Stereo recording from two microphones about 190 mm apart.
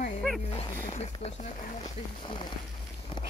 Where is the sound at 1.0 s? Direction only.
35° left (ahead or behind).